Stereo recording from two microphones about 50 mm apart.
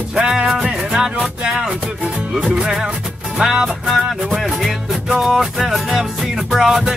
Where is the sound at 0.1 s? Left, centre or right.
Centre.